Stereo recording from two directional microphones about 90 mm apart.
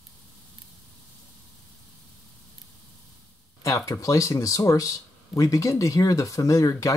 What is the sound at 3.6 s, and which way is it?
Speech, 35° left (ahead or behind).